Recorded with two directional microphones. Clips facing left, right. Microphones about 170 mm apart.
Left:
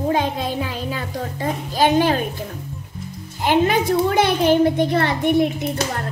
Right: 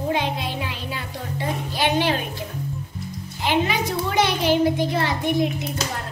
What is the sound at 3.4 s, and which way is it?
A child's voice, 50° left (ahead or behind).